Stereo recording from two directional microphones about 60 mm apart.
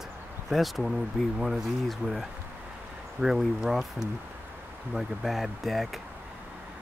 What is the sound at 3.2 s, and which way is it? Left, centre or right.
Speech, centre.